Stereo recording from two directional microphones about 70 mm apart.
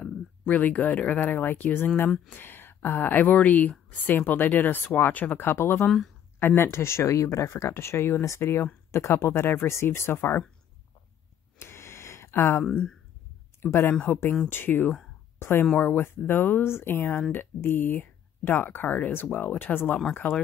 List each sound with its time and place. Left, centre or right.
0.0 s speech: centre; by 7.7 s left
7.7 s speech: left
11.5 s a sound: left
12.6 s speech: centre
13.6 s speech: left
15.3 s a sound: left
15.8 s speech: left